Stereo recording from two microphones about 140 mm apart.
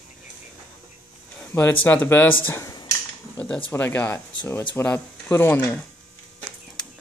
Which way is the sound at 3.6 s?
15° left (ahead or behind).